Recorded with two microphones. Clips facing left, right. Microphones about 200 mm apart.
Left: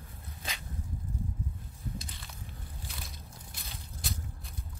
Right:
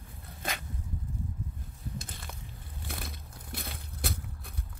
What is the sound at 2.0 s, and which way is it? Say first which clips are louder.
Crushing: right 2 dB; 50° right (ahead or behind).